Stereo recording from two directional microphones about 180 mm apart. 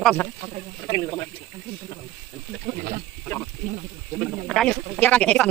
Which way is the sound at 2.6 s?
55° right (ahead or behind).